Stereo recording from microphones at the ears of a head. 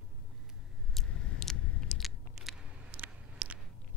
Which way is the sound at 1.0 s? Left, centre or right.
Left.